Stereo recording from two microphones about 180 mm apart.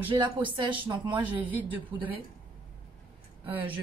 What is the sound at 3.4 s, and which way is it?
Speech, 30° right (ahead or behind).